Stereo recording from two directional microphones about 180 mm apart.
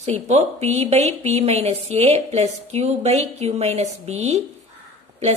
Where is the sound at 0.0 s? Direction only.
40° right (ahead or behind).